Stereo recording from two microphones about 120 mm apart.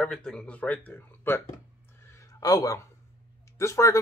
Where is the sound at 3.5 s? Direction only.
25° left (ahead or behind).